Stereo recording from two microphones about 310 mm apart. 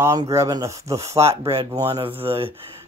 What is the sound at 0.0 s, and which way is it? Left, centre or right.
Speech, centre.